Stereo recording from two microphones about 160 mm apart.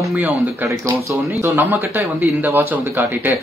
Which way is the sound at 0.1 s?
5° right (ahead or behind).